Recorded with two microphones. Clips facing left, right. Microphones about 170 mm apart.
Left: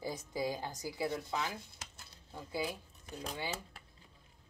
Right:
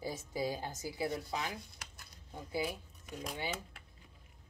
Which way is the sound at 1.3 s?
20° right (ahead or behind).